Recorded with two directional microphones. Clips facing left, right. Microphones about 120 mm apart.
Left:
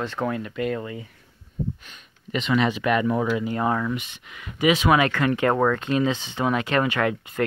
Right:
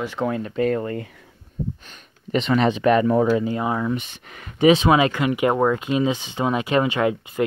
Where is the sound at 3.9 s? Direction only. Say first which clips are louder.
Right 3 dB; 30° right (ahead or behind).